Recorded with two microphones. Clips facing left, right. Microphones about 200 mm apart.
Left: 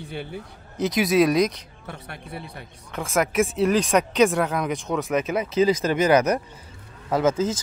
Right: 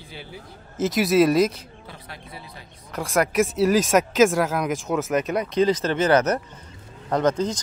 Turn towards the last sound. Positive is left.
turn(degrees=5)  # may be behind; listen again after turning